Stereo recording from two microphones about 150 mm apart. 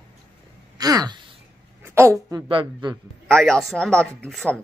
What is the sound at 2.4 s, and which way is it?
Speech, 30° right (ahead or behind).